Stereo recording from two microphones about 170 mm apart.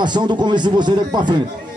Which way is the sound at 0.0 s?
25° right (ahead or behind).